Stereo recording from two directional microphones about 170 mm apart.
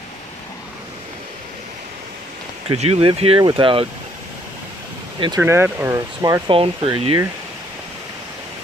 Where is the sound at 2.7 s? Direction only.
35° right (ahead or behind).